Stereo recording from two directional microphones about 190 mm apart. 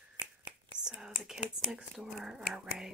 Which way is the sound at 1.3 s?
40° left (ahead or behind).